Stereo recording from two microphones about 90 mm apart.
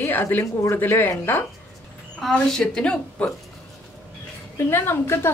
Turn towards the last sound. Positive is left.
turn(degrees=30)  # may be behind; listen again after turning